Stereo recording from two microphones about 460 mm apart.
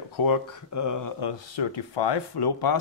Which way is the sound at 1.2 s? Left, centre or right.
Left.